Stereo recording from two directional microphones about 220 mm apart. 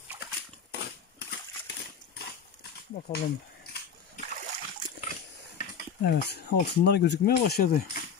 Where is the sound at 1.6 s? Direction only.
45° left (ahead or behind).